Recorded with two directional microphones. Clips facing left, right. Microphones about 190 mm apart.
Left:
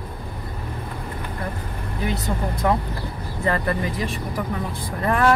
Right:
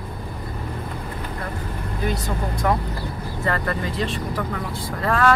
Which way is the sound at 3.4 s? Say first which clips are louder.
Left 2 dB; 20° left (ahead or behind).